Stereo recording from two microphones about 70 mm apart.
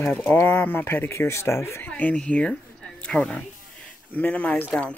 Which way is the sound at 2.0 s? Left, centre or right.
Centre.